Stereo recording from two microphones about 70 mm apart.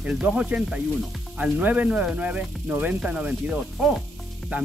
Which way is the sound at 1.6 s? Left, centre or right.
Right.